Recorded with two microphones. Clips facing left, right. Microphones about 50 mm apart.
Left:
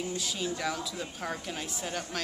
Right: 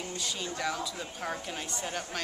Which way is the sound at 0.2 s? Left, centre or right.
Centre.